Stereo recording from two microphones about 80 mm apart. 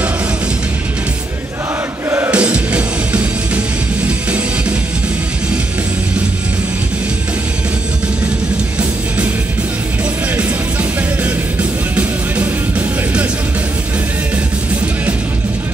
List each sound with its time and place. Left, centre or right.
2.0 s music: right
2.3 s music: centre
10.3 s music: centre